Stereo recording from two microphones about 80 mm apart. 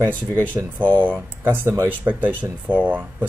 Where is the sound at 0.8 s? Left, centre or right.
Centre.